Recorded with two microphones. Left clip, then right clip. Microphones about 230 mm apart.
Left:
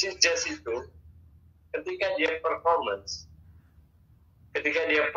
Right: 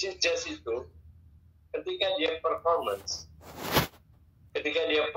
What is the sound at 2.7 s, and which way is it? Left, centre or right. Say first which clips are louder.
Speech: left 2 dB; left.